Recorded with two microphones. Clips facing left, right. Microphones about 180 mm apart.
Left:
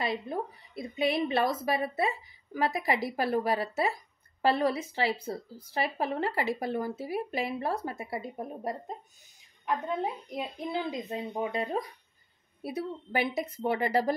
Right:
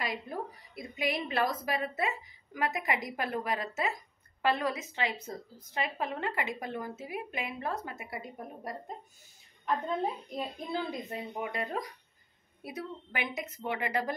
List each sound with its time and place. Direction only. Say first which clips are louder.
0.0 s a woman's voice: left 4 dB; 25° left (ahead or behind)
10.3 s a woman's voice: left 2 dB; 15° left (ahead or behind); by 14.1 s 35° left (ahead or behind)